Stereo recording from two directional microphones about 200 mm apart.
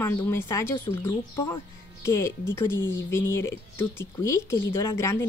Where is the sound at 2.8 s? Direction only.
70° left (ahead or behind).